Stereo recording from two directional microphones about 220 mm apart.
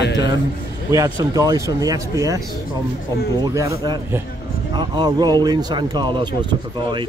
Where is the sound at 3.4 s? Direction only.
15° right (ahead or behind).